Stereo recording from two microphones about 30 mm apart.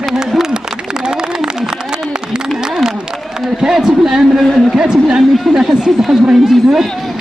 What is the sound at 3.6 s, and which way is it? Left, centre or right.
A man's voice, centre.